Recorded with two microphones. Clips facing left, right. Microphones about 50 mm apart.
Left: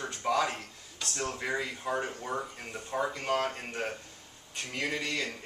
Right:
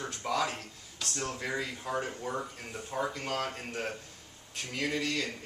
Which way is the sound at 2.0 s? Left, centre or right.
Centre.